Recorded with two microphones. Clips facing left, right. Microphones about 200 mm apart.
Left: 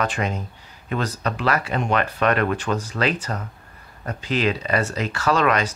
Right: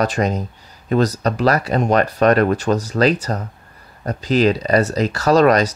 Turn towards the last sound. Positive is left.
turn(degrees=-40)  # may be behind; listen again after turning